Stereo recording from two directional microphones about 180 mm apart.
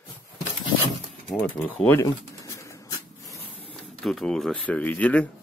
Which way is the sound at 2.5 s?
15° left (ahead or behind).